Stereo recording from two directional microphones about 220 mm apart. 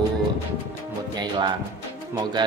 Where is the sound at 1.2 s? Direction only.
20° right (ahead or behind).